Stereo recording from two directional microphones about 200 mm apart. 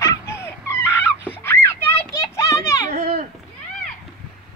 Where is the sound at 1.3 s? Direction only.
10° left (ahead or behind).